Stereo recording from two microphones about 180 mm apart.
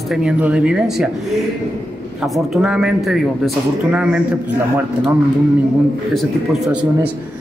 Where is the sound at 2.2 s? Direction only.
Centre (ahead or behind).